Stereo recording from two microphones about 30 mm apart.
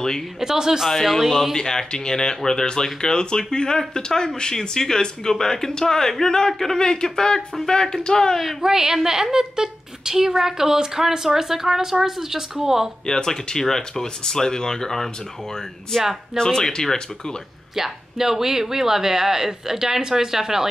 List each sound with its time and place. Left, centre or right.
0.4 s speech: centre
1.5 s speech: left
8.4 s speech: centre
13.0 s speech: left
17.7 s speech: centre